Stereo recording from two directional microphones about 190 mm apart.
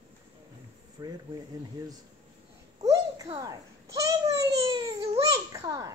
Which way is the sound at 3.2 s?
25° right (ahead or behind).